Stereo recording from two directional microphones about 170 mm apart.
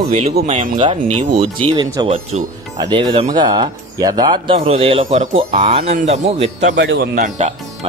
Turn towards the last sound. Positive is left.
turn(degrees=-45)  # may be behind; listen again after turning